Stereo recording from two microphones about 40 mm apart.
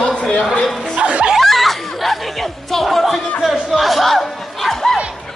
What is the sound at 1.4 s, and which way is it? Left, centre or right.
Snicker, centre.